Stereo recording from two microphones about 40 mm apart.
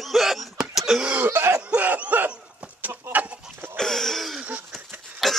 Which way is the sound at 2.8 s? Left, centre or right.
Right.